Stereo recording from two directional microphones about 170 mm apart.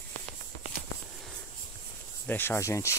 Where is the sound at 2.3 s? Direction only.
15° left (ahead or behind).